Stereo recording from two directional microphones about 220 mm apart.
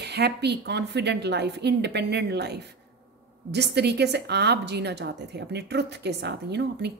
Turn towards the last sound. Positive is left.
turn(degrees=-50)  # may be behind; listen again after turning